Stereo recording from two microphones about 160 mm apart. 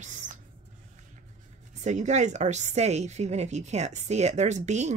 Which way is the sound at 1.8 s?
45° right (ahead or behind).